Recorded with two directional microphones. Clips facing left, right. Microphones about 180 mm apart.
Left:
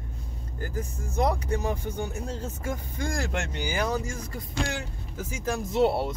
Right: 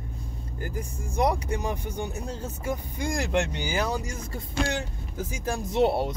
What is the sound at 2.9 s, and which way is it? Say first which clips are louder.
Speech: right 5 dB; 15° right (ahead or behind).